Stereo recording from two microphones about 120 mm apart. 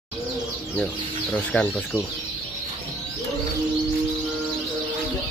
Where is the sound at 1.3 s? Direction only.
10° left (ahead or behind).